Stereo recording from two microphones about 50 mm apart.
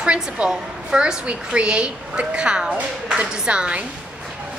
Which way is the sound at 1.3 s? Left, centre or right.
Right.